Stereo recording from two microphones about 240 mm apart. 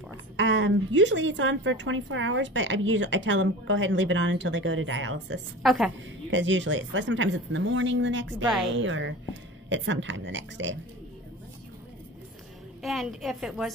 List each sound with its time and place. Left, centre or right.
0.4 s a woman's voice: right
5.6 s a woman's voice: centre
6.3 s a woman's voice: right
12.8 s a woman's voice: centre